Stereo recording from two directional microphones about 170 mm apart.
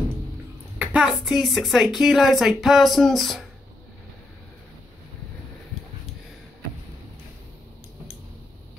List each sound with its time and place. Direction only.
0.7 s speech: 5° right (ahead or behind)